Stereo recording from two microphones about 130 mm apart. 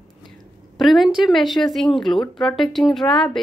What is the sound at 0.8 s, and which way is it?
A woman's voice, centre (ahead or behind).